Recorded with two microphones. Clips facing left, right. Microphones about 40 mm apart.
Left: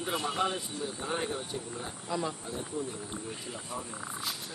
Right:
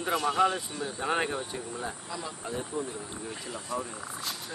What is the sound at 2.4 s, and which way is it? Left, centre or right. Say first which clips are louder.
Speech: right 3 dB; right.